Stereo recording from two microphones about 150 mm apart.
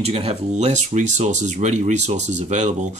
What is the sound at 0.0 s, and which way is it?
Speech, 40° right (ahead or behind).